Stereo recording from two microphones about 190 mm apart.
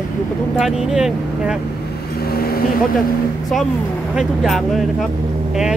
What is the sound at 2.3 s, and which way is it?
Vehicle, 50° left (ahead or behind).